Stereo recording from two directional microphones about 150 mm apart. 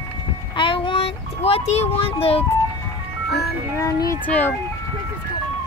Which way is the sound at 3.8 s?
20° left (ahead or behind).